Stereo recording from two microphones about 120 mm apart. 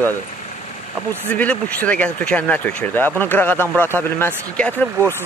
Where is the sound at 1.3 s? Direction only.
10° left (ahead or behind).